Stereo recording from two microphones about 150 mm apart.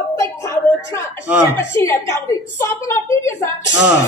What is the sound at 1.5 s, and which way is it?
Speech, 15° left (ahead or behind).